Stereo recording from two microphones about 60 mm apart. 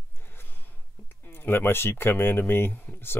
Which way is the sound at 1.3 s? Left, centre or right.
Left.